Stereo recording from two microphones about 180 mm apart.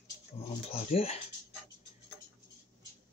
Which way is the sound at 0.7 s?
35° left (ahead or behind).